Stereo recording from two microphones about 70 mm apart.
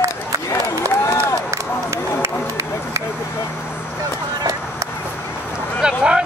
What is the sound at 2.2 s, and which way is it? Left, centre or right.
Run, right.